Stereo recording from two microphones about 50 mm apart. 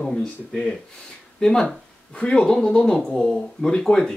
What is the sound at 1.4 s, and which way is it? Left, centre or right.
Speech, centre.